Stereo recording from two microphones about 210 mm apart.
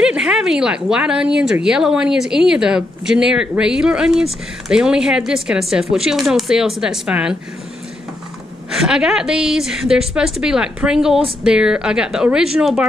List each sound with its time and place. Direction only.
0.0 s speech: 5° right (ahead or behind)
8.8 s speech: 5° right (ahead or behind)